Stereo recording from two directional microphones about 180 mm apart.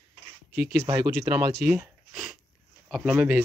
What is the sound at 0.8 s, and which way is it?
Speech, 15° right (ahead or behind).